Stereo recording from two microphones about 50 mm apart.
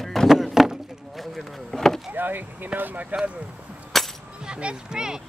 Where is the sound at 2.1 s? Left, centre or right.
Right.